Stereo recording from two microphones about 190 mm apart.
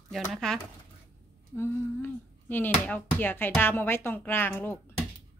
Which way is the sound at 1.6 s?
10° left (ahead or behind).